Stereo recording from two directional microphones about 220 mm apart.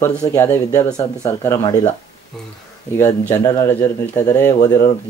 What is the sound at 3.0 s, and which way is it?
Speech, 15° left (ahead or behind).